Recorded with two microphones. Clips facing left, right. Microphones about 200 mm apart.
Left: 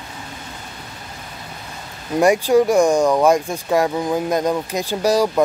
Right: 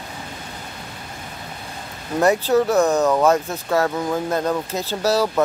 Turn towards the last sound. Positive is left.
turn(degrees=15)  # may be behind; listen again after turning